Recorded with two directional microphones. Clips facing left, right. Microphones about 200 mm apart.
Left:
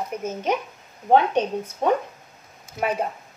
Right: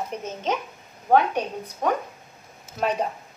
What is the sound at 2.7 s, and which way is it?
Speech, 5° left (ahead or behind).